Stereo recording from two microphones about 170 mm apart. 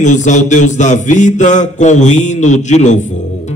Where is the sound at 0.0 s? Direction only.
45° left (ahead or behind).